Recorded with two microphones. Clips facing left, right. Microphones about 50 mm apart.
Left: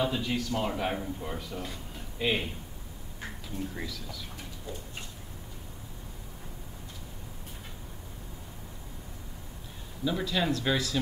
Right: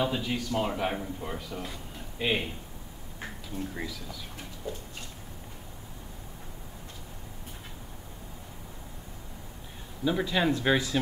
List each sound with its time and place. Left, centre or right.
0.0 s a man's voice: centre
3.7 s speech: centre
10.0 s speech: centre